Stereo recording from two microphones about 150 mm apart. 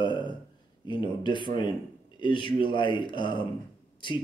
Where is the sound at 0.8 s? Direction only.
30° left (ahead or behind).